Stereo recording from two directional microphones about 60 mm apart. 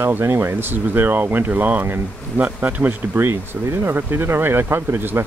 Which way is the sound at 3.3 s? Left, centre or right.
Right.